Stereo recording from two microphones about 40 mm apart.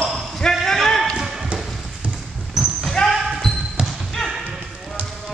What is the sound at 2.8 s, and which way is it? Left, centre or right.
Basketball bounce, centre.